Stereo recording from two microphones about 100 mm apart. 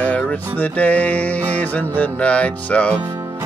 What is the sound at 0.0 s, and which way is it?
Music, 15° left (ahead or behind).